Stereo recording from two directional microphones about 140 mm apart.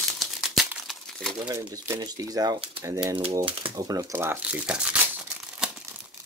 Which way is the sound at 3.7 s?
25° right (ahead or behind).